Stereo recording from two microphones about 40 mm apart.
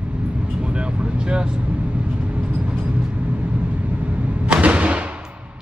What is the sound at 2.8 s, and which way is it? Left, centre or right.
Arrow, right.